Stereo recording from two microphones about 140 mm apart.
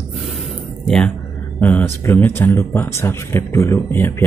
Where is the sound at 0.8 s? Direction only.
5° left (ahead or behind).